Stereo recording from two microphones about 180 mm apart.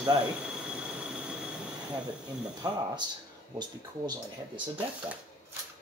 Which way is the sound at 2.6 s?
20° right (ahead or behind).